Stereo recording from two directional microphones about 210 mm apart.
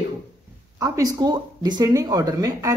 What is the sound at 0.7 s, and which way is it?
Speech, 15° right (ahead or behind).